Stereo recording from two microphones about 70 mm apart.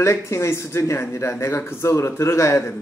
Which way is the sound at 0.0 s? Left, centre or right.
Left.